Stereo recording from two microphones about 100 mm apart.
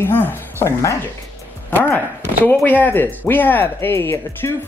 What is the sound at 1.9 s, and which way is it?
Speech, 15° left (ahead or behind).